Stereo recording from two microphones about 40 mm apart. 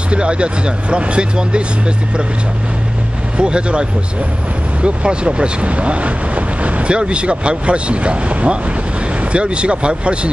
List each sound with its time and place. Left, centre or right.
0.1 s speech: right
3.3 s speech: right
4.8 s speech: right